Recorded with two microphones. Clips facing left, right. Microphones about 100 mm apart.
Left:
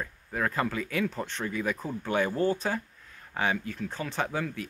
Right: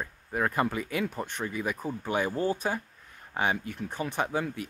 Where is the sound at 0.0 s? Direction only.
15° right (ahead or behind).